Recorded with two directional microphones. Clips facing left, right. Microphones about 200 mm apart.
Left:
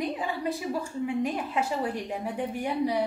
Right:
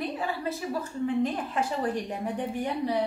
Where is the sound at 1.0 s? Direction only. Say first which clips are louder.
Right 3 dB; 10° left (ahead or behind).